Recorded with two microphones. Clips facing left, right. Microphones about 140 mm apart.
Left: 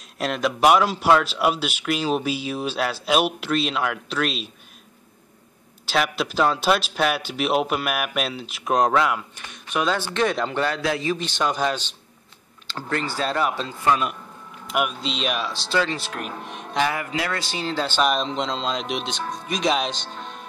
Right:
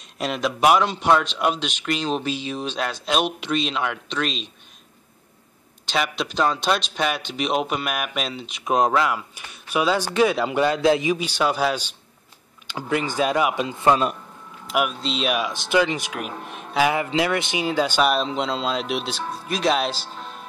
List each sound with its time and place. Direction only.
0.0 s a man's voice: centre (ahead or behind)
5.9 s a man's voice: 5° left (ahead or behind)
12.9 s a man's voice: 15° right (ahead or behind)
13.7 s a man's voice: 30° right (ahead or behind)
14.7 s a man's voice: centre (ahead or behind)
16.2 s a man's voice: centre (ahead or behind)
16.9 s a man's voice: 20° right (ahead or behind); by 20.4 s 5° right (ahead or behind)